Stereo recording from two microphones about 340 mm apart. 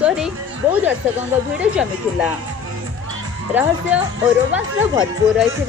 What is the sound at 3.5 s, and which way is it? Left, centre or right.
A woman's voice, centre.